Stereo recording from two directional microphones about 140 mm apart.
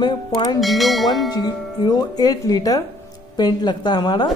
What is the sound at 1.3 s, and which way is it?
A man's voice, 30° left (ahead or behind).